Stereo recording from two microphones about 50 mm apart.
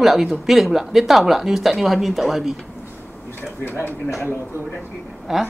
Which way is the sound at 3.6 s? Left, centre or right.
Left.